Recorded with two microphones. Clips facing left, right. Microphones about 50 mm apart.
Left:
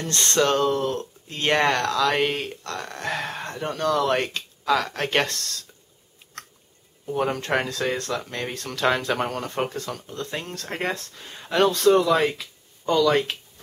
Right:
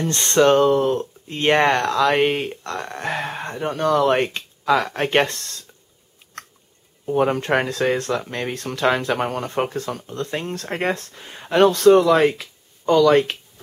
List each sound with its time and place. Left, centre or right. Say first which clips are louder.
0.1 s speech: right 6 dB; right
7.1 s speech: right 5 dB; centre
8.8 s speech: right 3 dB; centre